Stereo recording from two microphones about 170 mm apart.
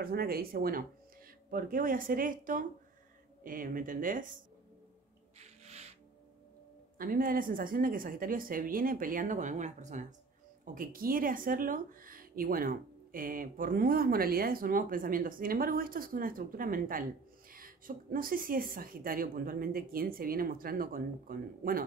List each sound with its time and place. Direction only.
0.0 s speech: 65° right (ahead or behind)
5.4 s owl: 40° right (ahead or behind)
7.0 s speech: 55° right (ahead or behind)
10.6 s speech: 55° right (ahead or behind)